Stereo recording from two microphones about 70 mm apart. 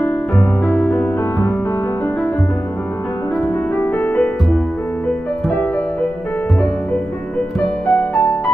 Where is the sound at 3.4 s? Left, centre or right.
Left.